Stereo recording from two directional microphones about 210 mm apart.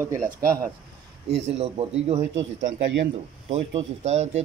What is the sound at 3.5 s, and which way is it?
Speech, 30° right (ahead or behind).